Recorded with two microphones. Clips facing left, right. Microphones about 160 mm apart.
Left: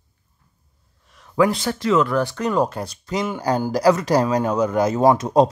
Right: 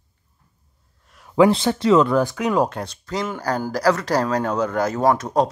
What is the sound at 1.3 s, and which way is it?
Speech, 25° right (ahead or behind).